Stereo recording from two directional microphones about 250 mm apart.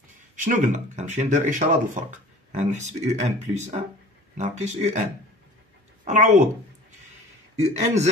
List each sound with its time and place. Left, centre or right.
0.4 s speech: right
6.0 s speech: right
7.7 s speech: right